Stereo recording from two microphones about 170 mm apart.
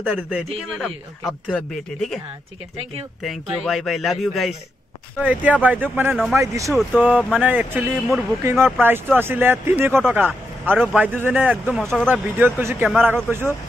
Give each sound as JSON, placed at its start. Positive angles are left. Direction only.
{"t": 0.0, "sound": "a man's voice", "side_deg": -5}
{"t": 3.3, "sound": "a man's voice", "side_deg": 0}
{"t": 6.7, "sound": "speech", "side_deg": 0}
{"t": 7.3, "sound": "a man's voice", "side_deg": -10}
{"t": 11.8, "sound": "speech", "side_deg": 0}
{"t": 12.1, "sound": "a man's voice", "side_deg": -10}